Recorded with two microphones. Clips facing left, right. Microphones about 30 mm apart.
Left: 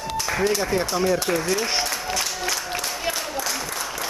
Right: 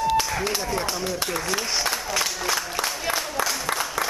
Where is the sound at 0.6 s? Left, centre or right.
Centre.